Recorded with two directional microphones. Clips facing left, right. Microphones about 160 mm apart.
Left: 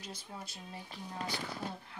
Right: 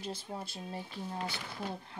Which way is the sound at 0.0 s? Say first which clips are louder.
Right 6 dB; 30° right (ahead or behind).